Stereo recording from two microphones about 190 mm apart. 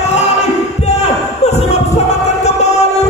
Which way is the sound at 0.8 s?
35° left (ahead or behind).